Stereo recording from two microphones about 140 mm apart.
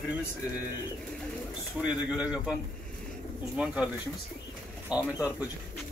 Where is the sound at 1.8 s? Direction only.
5° right (ahead or behind).